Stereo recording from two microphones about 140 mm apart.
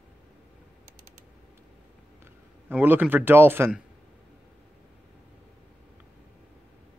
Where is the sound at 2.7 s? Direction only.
15° right (ahead or behind).